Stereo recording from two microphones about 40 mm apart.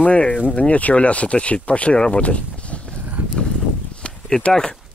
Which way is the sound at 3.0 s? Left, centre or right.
Right.